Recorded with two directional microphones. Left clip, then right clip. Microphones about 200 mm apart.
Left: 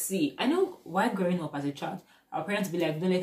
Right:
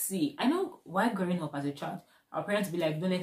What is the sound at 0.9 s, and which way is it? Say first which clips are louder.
Speech: left 2 dB; 15° right (ahead or behind).